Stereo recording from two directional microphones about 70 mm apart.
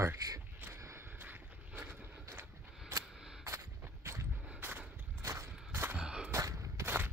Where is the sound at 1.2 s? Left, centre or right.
Right.